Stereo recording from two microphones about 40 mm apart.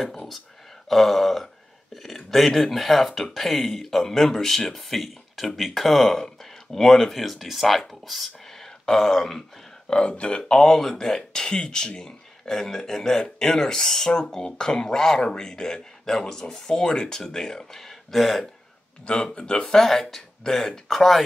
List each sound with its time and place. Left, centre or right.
0.0 s a sound: centre
0.8 s speech: centre
8.5 s a sound: centre
9.8 s speech: left
10.6 s speech: centre
19.0 s speech: left
19.7 s speech: centre